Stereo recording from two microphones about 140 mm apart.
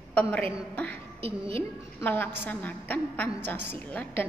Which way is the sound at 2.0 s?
15° left (ahead or behind).